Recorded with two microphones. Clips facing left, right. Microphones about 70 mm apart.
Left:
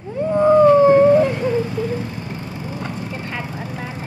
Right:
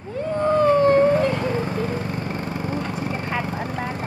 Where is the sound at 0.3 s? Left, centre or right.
Centre.